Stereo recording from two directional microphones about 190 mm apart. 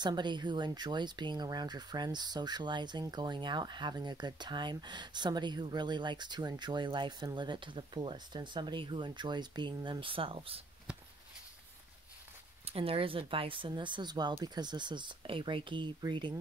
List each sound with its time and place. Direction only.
0.0 s speech: 25° right (ahead or behind)
12.6 s speech: 30° right (ahead or behind)